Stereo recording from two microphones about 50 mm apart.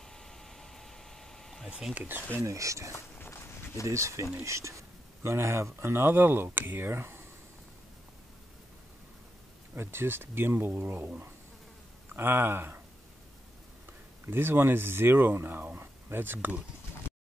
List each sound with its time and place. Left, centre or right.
0.0 s a sound: centre
2.0 s speech: right
2.4 s speech: right
2.9 s a sound: left
3.8 s speech: right
9.8 s speech: right
14.2 s speech: right